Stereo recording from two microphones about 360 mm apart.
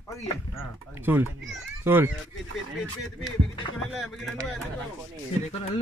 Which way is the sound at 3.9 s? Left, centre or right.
Centre.